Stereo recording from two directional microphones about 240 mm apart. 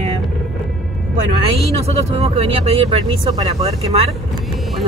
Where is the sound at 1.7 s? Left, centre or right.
Right.